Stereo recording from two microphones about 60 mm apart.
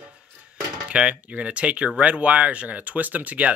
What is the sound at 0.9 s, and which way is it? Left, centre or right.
Speech, centre.